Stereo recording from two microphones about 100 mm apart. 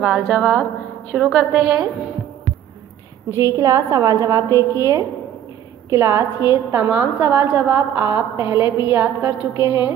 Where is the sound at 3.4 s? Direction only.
35° right (ahead or behind).